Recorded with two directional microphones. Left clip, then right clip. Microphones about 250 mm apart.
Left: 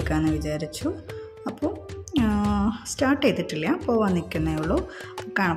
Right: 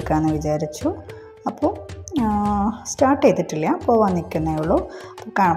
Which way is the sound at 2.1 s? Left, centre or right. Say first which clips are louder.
Right 4 dB; centre.